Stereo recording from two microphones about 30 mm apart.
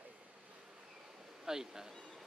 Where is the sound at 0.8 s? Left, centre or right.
Centre.